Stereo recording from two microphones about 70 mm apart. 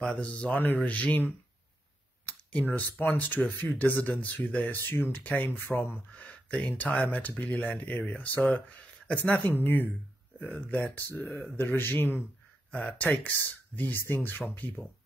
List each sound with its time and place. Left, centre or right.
0.0 s speech: centre
2.7 s speech: left
6.1 s speech: centre
6.8 s speech: left
11.0 s speech: left
12.7 s speech: centre